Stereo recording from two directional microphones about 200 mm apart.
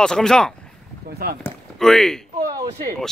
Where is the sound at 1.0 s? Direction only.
50° right (ahead or behind).